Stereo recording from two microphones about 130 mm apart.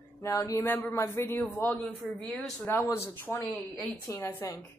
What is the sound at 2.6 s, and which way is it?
Speech, 20° left (ahead or behind).